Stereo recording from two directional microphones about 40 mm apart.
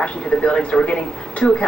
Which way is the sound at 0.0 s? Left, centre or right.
Left.